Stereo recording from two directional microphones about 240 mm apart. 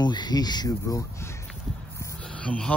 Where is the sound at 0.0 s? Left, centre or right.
Centre.